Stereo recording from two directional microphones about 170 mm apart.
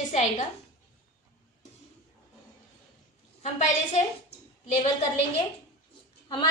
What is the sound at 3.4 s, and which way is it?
A woman's voice, 45° left (ahead or behind).